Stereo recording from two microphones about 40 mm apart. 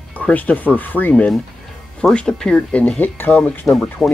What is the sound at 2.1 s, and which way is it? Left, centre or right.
Speech, left.